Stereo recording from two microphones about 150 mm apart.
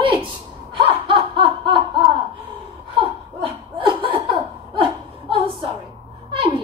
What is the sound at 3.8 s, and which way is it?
Laughter, 35° right (ahead or behind).